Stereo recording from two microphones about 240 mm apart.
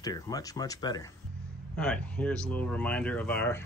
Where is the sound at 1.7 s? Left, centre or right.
Centre.